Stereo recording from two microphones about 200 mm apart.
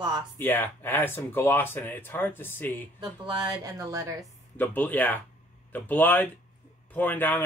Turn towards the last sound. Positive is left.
turn(degrees=10)  # may be behind; listen again after turning